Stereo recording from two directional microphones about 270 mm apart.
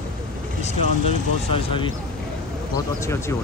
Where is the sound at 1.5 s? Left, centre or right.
Centre.